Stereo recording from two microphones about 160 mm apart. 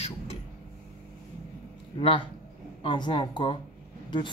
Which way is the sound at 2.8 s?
30° left (ahead or behind).